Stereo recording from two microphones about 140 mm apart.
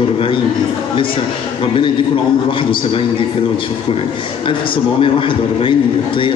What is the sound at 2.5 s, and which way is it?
Speech, 35° left (ahead or behind).